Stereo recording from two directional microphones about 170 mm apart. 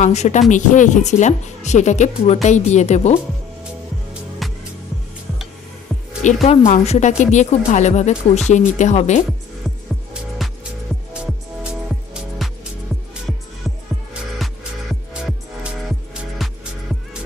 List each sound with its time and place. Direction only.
0.0 s speech: 40° left (ahead or behind)
4.4 s music: centre (ahead or behind)
6.2 s speech: 40° left (ahead or behind)
10.4 s music: centre (ahead or behind)
12.4 s music: centre (ahead or behind)
16.4 s music: centre (ahead or behind)